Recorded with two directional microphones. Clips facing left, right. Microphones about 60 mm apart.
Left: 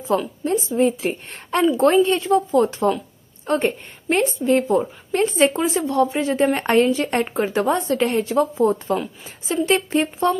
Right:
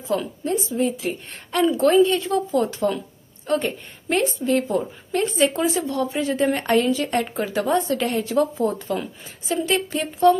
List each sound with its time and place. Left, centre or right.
0.4 s a woman's voice: left